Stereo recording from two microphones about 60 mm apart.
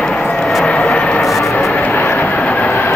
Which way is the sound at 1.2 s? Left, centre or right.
Centre.